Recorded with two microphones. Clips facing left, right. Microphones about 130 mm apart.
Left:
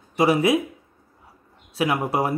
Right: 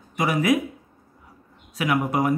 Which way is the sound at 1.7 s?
30° left (ahead or behind).